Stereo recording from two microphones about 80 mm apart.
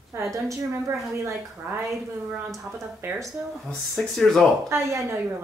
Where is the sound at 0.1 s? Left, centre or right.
Right.